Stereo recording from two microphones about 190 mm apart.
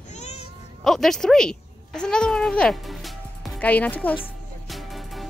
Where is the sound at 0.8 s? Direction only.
Centre (ahead or behind).